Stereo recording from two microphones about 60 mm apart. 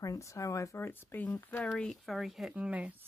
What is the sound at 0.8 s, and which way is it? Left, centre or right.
Speech, left.